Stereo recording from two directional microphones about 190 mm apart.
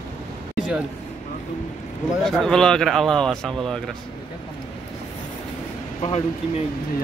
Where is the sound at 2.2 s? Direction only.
Centre (ahead or behind).